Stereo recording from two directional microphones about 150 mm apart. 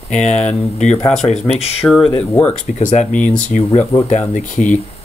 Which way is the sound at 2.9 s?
55° left (ahead or behind).